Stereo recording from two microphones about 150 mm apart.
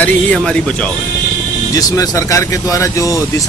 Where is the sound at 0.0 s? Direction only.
5° left (ahead or behind).